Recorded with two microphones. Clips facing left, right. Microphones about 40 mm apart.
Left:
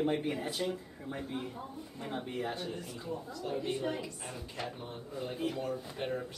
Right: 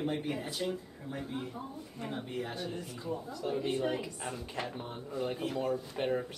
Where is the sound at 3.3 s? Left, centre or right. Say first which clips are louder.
Right 2 dB; centre.